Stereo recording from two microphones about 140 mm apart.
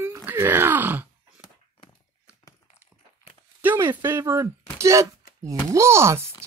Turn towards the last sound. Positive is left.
turn(degrees=-20)  # may be behind; listen again after turning